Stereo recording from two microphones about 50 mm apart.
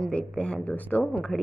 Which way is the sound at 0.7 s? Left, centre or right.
Left.